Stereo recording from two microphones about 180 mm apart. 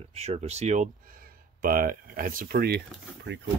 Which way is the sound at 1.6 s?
50° right (ahead or behind).